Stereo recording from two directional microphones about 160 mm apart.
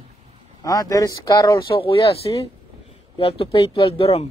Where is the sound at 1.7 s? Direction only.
35° left (ahead or behind).